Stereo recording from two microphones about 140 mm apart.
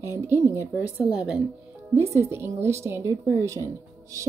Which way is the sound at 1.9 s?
20° right (ahead or behind).